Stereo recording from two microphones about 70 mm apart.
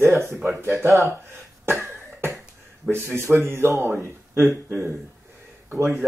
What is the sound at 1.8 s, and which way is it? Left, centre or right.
Cough, right.